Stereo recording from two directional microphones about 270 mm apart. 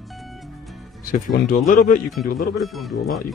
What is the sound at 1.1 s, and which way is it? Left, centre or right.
Speech, left.